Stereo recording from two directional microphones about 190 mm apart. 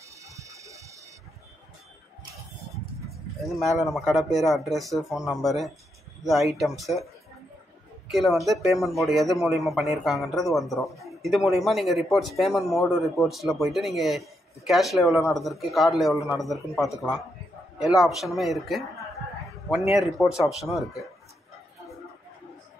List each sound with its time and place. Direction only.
0.2 s a sound: 15° right (ahead or behind)
3.4 s a man's voice: centre (ahead or behind)
8.1 s a man's voice: centre (ahead or behind)
19.9 s a man's voice: centre (ahead or behind)